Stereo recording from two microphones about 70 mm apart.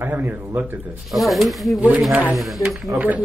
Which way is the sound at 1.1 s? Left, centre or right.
Centre.